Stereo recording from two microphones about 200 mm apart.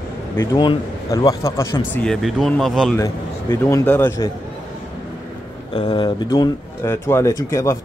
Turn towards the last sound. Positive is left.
turn(degrees=15)  # may be behind; listen again after turning